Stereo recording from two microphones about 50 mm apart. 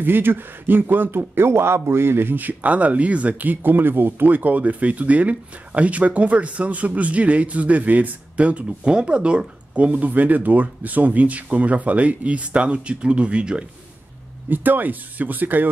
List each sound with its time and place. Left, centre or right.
0.0 s speech: right
14.5 s speech: right